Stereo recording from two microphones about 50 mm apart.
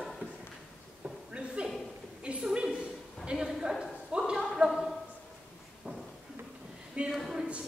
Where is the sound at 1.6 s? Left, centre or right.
Right.